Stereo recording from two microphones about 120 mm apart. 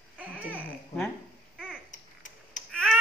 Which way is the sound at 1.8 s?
90° left.